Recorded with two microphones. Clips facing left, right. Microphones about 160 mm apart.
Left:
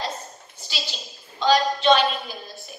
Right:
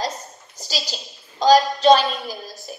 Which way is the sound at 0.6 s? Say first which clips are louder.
Right 5 dB; 40° right (ahead or behind).